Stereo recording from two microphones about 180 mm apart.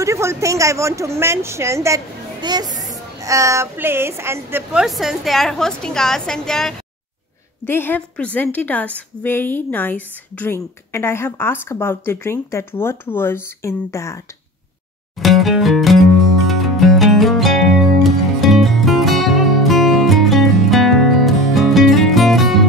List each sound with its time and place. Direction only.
0.0 s a woman's voice: 15° right (ahead or behind); by 14.2 s 15° left (ahead or behind)
15.1 s speech: centre (ahead or behind)
16.4 s music: centre (ahead or behind)